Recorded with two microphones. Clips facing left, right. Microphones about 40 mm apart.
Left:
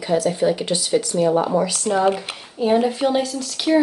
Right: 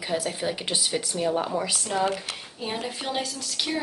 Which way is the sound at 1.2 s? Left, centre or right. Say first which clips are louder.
Left 8 dB; centre.